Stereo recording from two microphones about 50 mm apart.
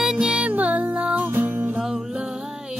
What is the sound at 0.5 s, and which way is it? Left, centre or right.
Music, right.